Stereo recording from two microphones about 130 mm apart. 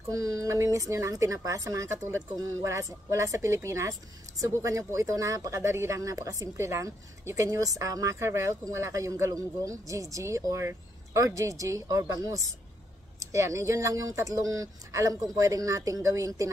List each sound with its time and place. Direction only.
0.1 s speech: 25° right (ahead or behind)